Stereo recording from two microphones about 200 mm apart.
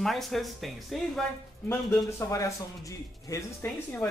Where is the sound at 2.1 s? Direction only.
15° left (ahead or behind).